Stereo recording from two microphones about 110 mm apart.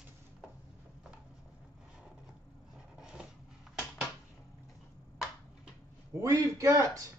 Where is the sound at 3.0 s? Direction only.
5° right (ahead or behind).